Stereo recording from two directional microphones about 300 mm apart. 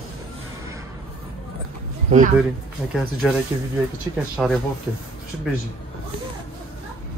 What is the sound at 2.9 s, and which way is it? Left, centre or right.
Speech, centre.